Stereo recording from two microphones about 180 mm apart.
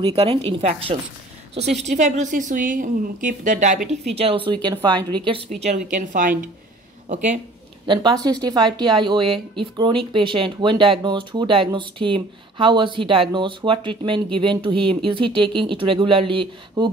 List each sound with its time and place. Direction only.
0.0 s speech: 35° right (ahead or behind)
1.5 s a woman's voice: 40° right (ahead or behind)
4.1 s speech: 30° right (ahead or behind)
5.6 s speech: 40° right (ahead or behind)
7.1 s speech: 40° right (ahead or behind)
7.8 s speech: 25° right (ahead or behind)